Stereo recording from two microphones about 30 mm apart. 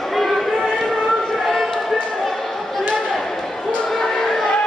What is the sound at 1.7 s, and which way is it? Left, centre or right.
Basketball bounce, centre.